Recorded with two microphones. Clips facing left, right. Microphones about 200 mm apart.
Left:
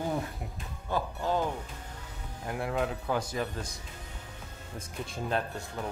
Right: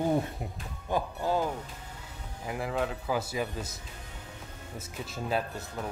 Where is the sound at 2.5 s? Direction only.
Centre (ahead or behind).